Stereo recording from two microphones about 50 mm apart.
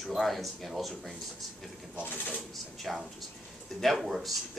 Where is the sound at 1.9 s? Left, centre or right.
Left.